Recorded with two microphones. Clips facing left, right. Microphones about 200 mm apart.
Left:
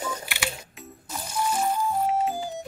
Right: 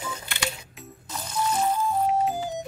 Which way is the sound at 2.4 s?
20° right (ahead or behind).